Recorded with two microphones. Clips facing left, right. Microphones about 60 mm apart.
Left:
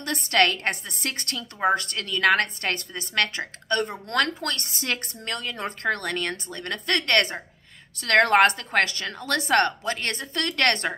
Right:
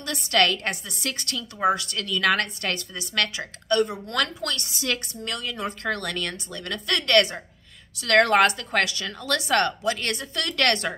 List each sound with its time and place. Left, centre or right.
0.0 s a woman's voice: left